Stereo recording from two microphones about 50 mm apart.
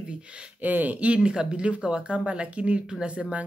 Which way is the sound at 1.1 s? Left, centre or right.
Centre.